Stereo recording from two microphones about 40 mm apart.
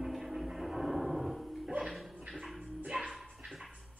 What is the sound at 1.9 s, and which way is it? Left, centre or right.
Dog, centre.